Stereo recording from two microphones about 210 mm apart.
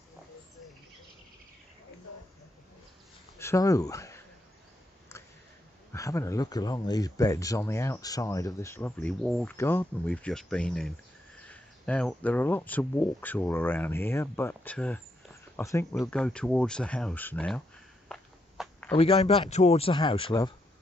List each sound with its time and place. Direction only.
3.3 s speech: 15° left (ahead or behind)
5.9 s speech: 15° left (ahead or behind)
16.0 s speech: 5° left (ahead or behind)
18.0 s a sound: 5° left (ahead or behind)
18.9 s speech: 25° left (ahead or behind)